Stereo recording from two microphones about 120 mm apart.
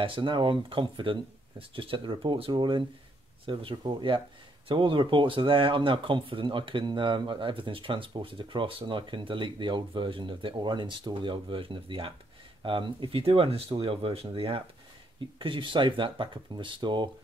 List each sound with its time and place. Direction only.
0.0 s speech: 45° right (ahead or behind)